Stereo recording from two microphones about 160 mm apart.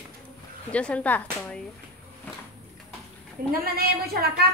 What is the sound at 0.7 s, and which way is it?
Speech, 10° left (ahead or behind).